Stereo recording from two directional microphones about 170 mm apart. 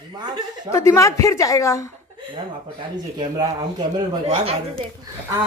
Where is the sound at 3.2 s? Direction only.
25° right (ahead or behind).